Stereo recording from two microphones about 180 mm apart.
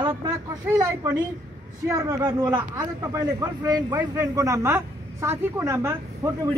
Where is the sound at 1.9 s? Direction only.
15° right (ahead or behind).